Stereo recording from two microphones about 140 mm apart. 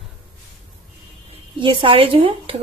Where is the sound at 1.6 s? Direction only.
40° right (ahead or behind).